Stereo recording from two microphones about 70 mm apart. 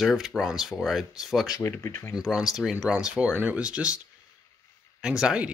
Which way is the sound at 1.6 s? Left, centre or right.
Left.